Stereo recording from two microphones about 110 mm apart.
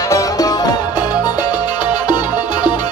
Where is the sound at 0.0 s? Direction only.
30° left (ahead or behind).